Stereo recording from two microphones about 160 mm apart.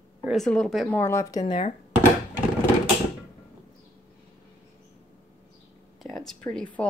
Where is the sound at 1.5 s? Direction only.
35° left (ahead or behind).